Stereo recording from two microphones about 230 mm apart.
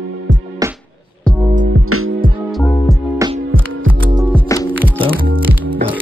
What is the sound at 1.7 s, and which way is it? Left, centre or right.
Music, right.